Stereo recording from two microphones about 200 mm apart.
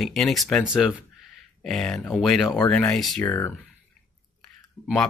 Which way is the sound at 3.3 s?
15° left (ahead or behind).